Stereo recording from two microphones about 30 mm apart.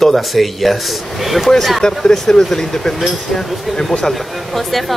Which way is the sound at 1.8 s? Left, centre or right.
Left.